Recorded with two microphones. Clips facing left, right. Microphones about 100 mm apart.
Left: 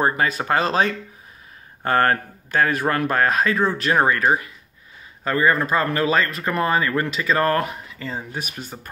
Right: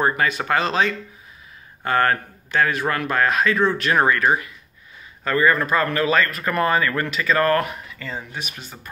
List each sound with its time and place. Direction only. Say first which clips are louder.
0.0 s speech: even; 30° left (ahead or behind)